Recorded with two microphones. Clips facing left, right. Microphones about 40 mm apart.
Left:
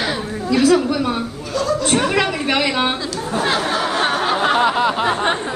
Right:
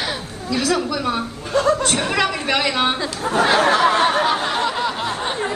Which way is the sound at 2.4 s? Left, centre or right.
Centre.